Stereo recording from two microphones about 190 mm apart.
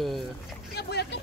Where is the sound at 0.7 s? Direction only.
60° left (ahead or behind).